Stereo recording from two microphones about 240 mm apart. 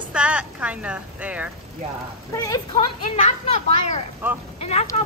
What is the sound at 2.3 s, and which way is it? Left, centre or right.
Speech, centre.